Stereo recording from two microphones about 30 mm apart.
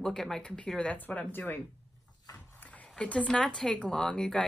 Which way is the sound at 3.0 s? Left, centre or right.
Left.